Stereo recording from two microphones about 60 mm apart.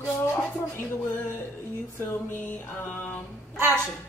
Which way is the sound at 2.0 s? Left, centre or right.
Left.